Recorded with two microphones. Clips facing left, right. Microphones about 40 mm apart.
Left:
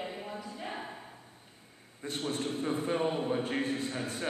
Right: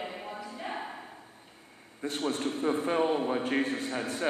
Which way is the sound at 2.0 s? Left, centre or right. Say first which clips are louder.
Right 3 dB; centre.